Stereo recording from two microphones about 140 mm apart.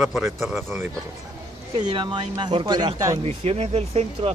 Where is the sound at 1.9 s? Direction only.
30° right (ahead or behind).